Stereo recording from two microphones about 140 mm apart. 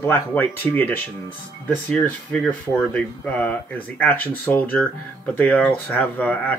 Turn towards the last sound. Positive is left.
turn(degrees=10)  # may be behind; listen again after turning